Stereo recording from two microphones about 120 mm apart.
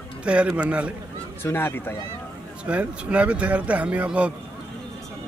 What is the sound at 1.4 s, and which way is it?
Speech, 20° left (ahead or behind).